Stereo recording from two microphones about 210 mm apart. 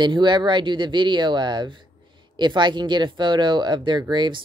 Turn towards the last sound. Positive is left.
turn(degrees=-20)  # may be behind; listen again after turning